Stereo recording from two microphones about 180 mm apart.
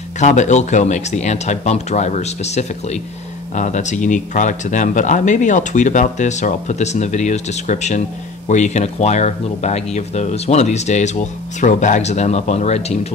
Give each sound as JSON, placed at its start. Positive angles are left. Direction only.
{"t": 0.2, "sound": "speech", "side_deg": 40}